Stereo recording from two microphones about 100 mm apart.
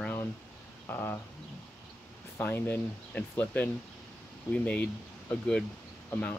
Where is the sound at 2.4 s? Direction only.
20° left (ahead or behind).